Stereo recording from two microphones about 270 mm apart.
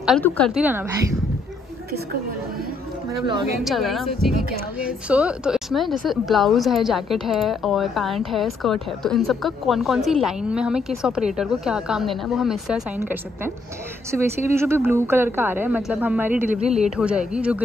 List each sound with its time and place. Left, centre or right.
0.0 s a woman's voice: centre
3.6 s a woman's voice: centre
16.6 s speech: right
16.9 s a woman's voice: centre